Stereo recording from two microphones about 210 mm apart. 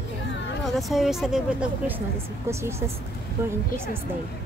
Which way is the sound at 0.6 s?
Centre (ahead or behind).